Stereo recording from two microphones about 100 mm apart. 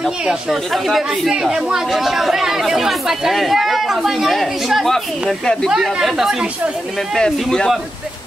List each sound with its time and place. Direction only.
0.2 s speech: 5° right (ahead or behind)
5.7 s speech: 5° right (ahead or behind)
7.2 s speech: 5° left (ahead or behind)